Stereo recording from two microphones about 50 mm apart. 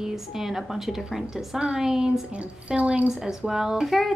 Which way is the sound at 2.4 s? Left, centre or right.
Right.